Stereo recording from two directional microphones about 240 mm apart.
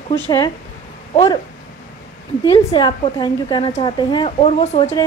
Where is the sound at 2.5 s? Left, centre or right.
Left.